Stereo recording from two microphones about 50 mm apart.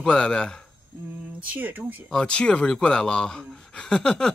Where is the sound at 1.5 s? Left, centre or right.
Right.